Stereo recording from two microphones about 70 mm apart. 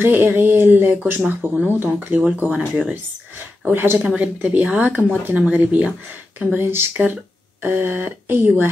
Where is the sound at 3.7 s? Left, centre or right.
Right.